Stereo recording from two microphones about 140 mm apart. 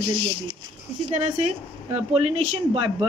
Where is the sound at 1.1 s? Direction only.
55° right (ahead or behind).